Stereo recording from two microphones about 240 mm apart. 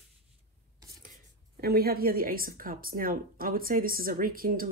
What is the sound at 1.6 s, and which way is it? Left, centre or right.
Speech, right.